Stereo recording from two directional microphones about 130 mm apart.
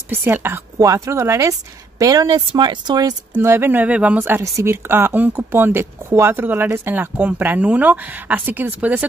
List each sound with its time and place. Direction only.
0.1 s speech: 15° right (ahead or behind); by 3.2 s 30° right (ahead or behind)
3.3 s speech: 20° right (ahead or behind)